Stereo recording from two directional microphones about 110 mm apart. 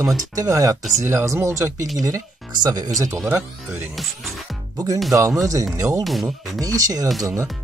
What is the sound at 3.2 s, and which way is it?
Speech, 20° right (ahead or behind).